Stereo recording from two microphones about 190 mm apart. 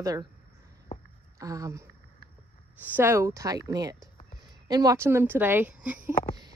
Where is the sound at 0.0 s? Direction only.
20° right (ahead or behind).